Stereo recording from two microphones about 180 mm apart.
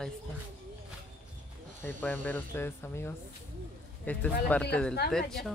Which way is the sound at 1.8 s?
10° left (ahead or behind).